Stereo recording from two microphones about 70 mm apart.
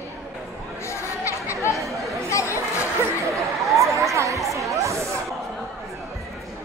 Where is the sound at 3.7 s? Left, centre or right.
Right.